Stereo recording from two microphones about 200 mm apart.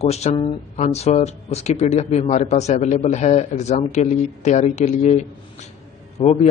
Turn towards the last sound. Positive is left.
turn(degrees=35)  # may be behind; listen again after turning